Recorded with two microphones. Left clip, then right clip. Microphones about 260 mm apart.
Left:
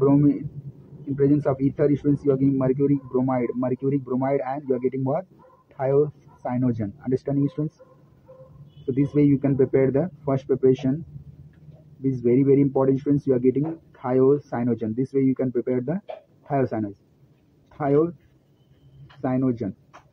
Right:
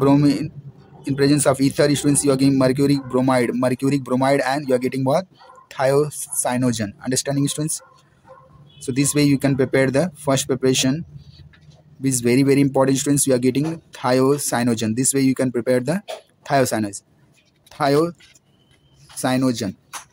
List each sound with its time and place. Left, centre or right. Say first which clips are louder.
0.0 s speech: right 3 dB; right
8.8 s speech: right 2 dB; right
12.0 s speech: right 3 dB; right
19.2 s speech: right 4 dB; right